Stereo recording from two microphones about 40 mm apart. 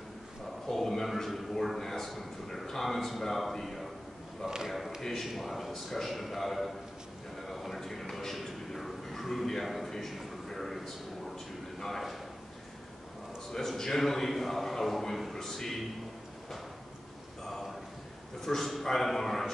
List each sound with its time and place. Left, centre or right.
0.7 s a man's voice: centre
7.4 s a sound: centre
11.8 s a man's voice: centre
13.5 s a man's voice: centre
17.5 s a sound: centre
18.4 s a man's voice: centre